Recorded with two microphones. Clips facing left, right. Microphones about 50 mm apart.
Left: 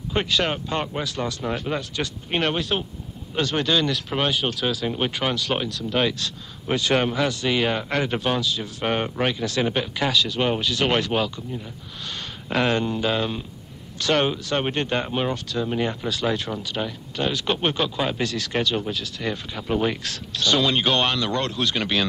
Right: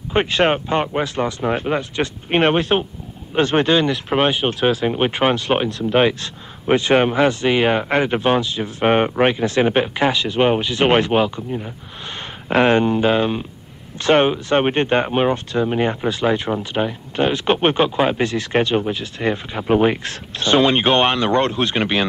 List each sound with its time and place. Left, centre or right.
0.1 s speech: right